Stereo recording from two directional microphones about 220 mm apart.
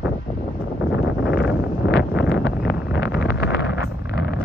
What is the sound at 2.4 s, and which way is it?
Vehicle, 50° left (ahead or behind).